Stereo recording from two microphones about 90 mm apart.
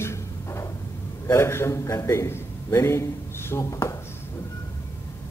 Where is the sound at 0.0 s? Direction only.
30° left (ahead or behind).